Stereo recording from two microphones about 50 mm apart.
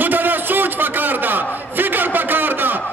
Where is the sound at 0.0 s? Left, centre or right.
Right.